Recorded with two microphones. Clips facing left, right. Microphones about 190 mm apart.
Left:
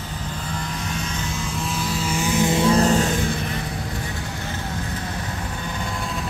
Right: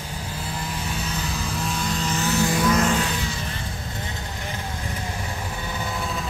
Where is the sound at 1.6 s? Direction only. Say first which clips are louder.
Left 1 dB; centre (ahead or behind); by 3.4 s 50° left (ahead or behind).